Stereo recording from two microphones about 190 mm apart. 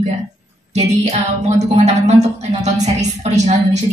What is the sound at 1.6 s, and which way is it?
A woman's voice, 35° right (ahead or behind).